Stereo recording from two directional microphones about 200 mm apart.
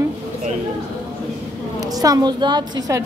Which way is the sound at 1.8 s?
20° right (ahead or behind).